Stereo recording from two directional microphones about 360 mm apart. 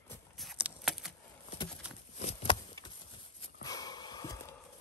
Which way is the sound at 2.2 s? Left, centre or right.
Centre.